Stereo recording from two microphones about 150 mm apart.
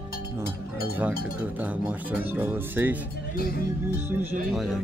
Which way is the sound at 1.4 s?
10° right (ahead or behind).